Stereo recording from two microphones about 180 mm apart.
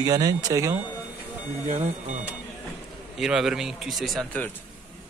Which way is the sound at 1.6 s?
40° right (ahead or behind).